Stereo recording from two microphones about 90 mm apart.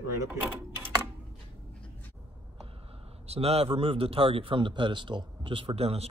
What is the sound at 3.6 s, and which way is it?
A man's voice, 90° right.